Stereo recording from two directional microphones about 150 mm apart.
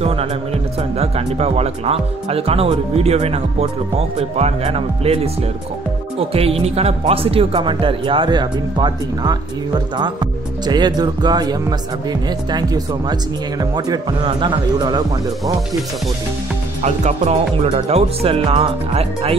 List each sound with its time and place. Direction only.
0.0 s speech: 40° right (ahead or behind)
10.6 s speech: 30° right (ahead or behind)
16.8 s speech: 50° right (ahead or behind)